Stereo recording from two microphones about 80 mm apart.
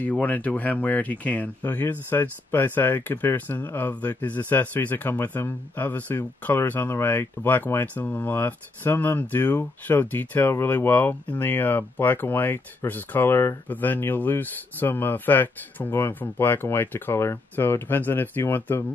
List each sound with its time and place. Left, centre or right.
0.0 s speech: centre